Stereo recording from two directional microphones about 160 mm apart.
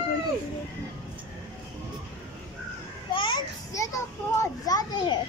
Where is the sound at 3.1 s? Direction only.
30° left (ahead or behind).